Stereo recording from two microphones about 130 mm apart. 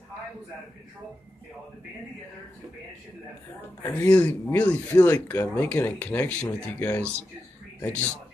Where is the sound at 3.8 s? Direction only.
15° left (ahead or behind).